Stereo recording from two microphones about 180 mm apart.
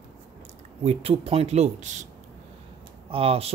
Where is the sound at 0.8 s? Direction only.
35° right (ahead or behind).